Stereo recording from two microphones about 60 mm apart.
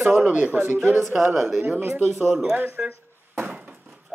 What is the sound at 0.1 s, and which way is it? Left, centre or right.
Speech, right.